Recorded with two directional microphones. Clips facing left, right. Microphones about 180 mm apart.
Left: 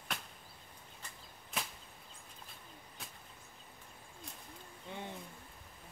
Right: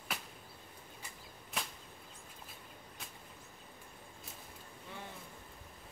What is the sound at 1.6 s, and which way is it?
Whip, centre (ahead or behind).